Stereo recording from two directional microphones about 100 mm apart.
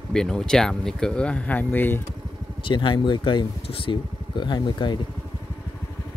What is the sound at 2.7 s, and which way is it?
Speech, 55° left (ahead or behind).